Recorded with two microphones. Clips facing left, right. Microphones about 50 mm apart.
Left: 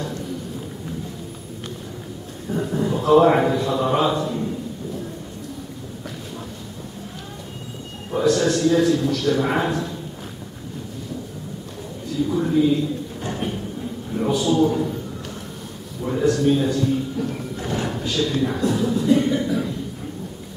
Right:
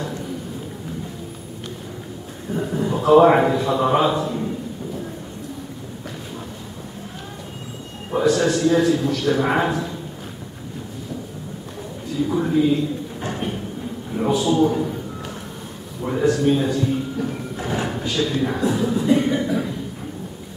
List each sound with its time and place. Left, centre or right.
2.5 s a man's voice: centre
8.1 s a man's voice: centre
12.3 s a man's voice: centre
14.1 s a man's voice: centre
16.0 s a man's voice: centre